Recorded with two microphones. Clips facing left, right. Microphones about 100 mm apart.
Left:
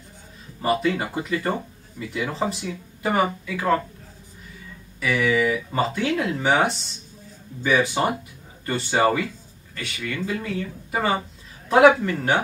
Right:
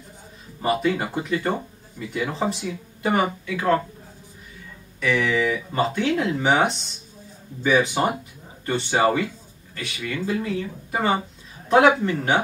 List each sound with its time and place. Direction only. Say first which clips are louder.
0.6 s speech: even; 5° right (ahead or behind)
5.0 s speech: left 1 dB; 5° left (ahead or behind)